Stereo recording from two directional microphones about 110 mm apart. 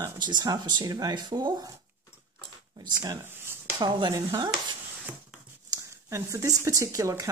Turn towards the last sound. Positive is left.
turn(degrees=-30)  # may be behind; listen again after turning